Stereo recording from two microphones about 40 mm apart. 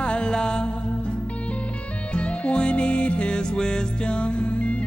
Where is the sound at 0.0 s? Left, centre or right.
Left.